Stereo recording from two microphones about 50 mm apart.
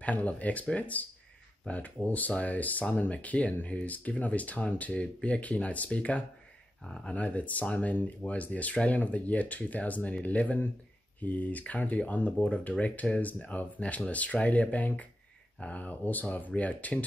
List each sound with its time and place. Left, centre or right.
0.0 s speech: left
7.2 s speech: left